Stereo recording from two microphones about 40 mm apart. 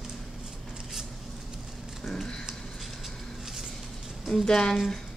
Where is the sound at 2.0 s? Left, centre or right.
Centre.